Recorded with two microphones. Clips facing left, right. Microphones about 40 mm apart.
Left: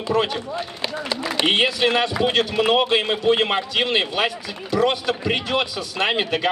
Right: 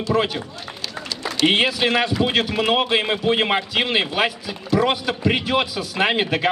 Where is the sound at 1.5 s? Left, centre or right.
Centre.